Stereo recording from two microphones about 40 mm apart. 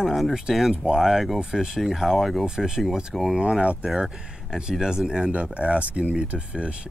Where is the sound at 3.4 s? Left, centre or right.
Right.